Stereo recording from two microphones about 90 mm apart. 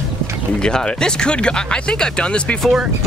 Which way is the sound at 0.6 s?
10° left (ahead or behind).